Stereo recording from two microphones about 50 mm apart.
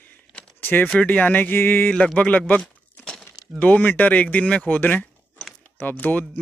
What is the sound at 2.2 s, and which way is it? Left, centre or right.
Speech, left.